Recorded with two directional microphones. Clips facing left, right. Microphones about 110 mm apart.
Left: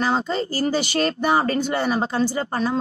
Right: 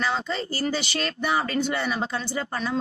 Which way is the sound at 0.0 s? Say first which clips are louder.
Left 5 dB; 40° left (ahead or behind).